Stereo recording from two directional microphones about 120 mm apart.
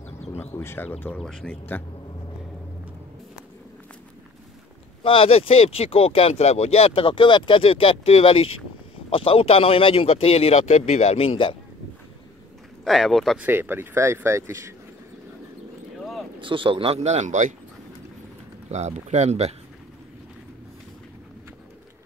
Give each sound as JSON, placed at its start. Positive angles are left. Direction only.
{"t": 0.3, "sound": "speech", "side_deg": 20}
{"t": 5.0, "sound": "speech", "side_deg": 50}
{"t": 12.8, "sound": "speech", "side_deg": 0}
{"t": 13.4, "sound": "speech", "side_deg": -20}
{"t": 16.3, "sound": "speech", "side_deg": -45}
{"t": 17.0, "sound": "speech", "side_deg": -70}
{"t": 18.7, "sound": "speech", "side_deg": -70}